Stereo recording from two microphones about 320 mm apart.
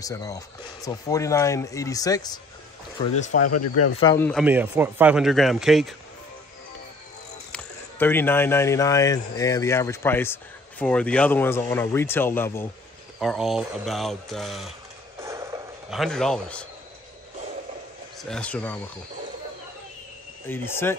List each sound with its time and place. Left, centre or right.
0.0 s speech: centre
3.0 s speech: left
3.3 s speech: left
4.0 s speech: centre
7.5 s speech: centre
15.1 s a sound: centre
18.3 s speech: centre
20.4 s speech: centre